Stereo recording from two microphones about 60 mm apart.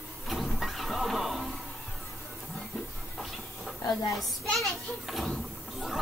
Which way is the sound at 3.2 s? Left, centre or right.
Centre.